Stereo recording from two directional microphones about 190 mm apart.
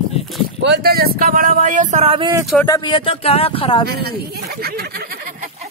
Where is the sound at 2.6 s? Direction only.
20° left (ahead or behind).